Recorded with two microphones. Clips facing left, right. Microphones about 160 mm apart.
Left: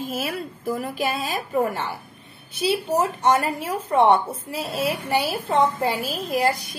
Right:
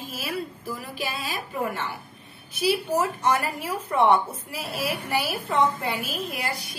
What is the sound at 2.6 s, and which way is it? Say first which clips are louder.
A woman's voice: left 2 dB; 25° left (ahead or behind).